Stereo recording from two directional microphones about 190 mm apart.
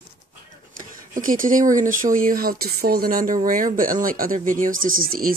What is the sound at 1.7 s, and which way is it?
Speech, 45° right (ahead or behind).